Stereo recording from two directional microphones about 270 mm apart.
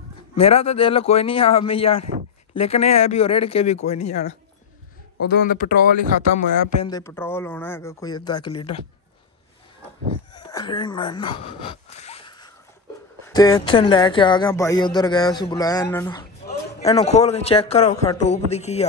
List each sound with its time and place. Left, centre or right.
0.3 s speech: left
6.8 s speech: centre
10.3 s speech: centre
16.8 s speech: left